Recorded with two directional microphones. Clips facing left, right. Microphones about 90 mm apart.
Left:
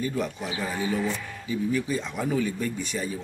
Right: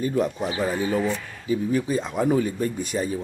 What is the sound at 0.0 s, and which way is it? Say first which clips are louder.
Speech: right 5 dB; 40° right (ahead or behind).